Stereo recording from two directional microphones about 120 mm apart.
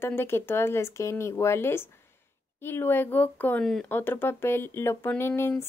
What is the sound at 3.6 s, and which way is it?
Speech, 5° left (ahead or behind).